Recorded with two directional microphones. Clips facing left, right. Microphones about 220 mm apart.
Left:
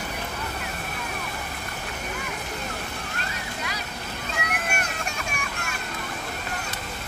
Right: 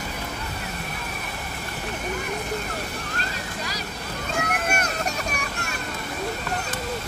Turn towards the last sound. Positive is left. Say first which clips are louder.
# right 4 dB
turn(degrees=-40)  # may be behind; listen again after turning